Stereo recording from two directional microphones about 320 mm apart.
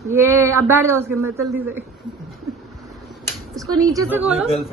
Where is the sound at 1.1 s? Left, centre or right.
Right.